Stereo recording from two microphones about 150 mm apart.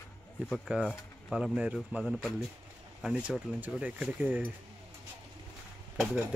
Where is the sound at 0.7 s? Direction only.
10° right (ahead or behind).